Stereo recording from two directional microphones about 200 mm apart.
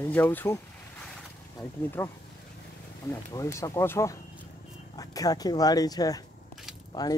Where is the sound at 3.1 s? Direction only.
15° left (ahead or behind).